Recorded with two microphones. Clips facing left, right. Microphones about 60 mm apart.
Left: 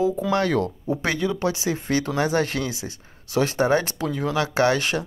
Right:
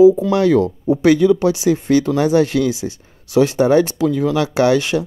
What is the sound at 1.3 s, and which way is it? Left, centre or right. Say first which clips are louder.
Speech: right 9 dB; left.